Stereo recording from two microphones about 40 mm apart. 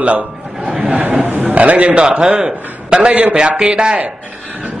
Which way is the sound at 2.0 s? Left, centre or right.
Centre.